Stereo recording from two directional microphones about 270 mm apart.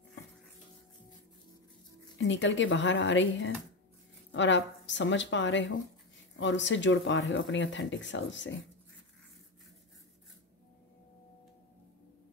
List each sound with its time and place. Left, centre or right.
2.1 s speech: left